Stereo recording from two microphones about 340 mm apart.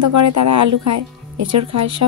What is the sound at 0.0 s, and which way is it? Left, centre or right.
A woman's voice, right.